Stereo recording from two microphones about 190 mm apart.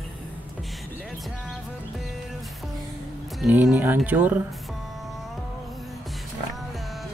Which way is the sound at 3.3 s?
5° right (ahead or behind).